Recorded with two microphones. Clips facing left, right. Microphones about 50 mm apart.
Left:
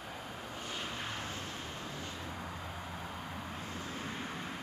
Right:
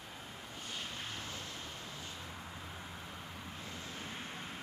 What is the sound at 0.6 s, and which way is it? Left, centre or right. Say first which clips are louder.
Vehicle: left 3 dB; left.